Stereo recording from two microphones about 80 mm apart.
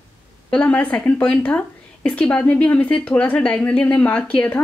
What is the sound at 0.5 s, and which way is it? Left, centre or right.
A woman's voice, centre.